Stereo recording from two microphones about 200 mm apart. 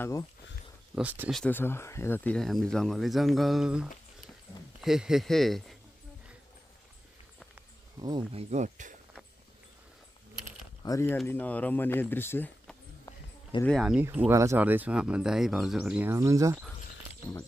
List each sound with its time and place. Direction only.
0.0 s speech: 15° left (ahead or behind)
0.9 s speech: 10° right (ahead or behind)
1.4 s speech: 10° left (ahead or behind)
8.0 s speech: 20° right (ahead or behind); by 8.9 s 40° right (ahead or behind)
10.8 s speech: 15° left (ahead or behind)
13.7 s speech: centre (ahead or behind)